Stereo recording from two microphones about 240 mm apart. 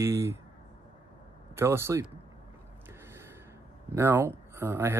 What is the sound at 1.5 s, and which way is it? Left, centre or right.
Speech, centre.